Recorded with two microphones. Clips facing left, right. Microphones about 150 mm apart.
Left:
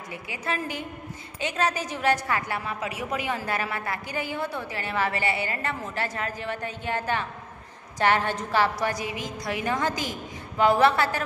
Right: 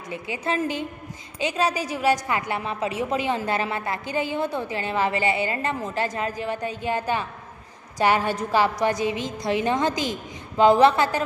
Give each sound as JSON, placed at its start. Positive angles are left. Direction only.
{"t": 0.1, "sound": "a woman's voice", "side_deg": -25}
{"t": 1.4, "sound": "a woman's voice", "side_deg": -10}